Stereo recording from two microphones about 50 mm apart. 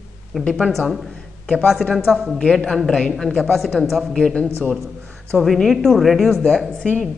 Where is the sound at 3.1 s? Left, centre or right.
Centre.